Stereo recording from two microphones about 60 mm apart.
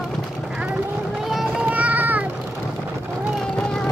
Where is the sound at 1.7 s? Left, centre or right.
Right.